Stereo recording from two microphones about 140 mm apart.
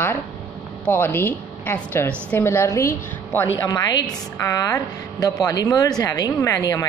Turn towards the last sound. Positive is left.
turn(degrees=25)  # may be behind; listen again after turning